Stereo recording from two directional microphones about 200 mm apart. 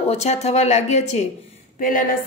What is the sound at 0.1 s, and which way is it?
A woman's voice, 35° left (ahead or behind).